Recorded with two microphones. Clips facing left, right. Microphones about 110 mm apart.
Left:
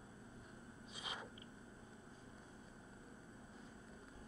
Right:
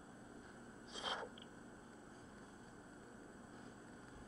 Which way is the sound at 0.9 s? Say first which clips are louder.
Right 5 dB; 25° right (ahead or behind).